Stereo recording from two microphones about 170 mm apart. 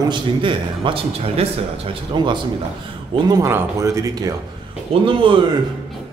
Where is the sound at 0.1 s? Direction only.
30° right (ahead or behind).